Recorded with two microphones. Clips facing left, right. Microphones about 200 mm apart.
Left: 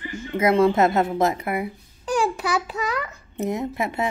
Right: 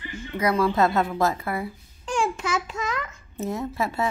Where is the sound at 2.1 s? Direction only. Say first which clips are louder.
Left 3 dB; 35° left (ahead or behind).